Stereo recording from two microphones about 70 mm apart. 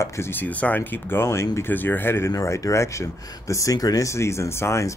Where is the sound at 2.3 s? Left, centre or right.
Left.